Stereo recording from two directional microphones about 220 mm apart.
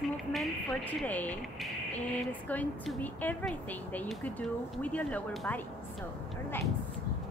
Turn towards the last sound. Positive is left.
turn(degrees=5)  # may be behind; listen again after turning